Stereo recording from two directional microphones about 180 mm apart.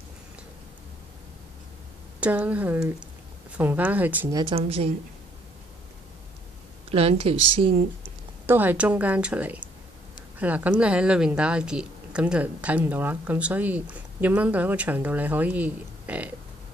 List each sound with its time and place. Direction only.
2.1 s a woman's voice: 5° right (ahead or behind)
4.4 s speech: 30° right (ahead or behind)
6.9 s speech: 35° right (ahead or behind)
8.5 s a woman's voice: 10° right (ahead or behind)